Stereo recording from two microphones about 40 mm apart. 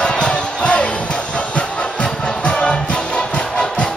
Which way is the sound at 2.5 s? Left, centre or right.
Left.